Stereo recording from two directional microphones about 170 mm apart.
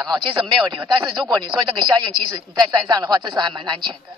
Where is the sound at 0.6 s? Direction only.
25° right (ahead or behind).